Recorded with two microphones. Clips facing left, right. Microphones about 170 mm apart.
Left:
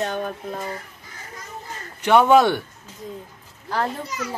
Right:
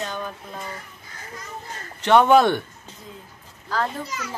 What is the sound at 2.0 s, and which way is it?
Speech, 10° left (ahead or behind).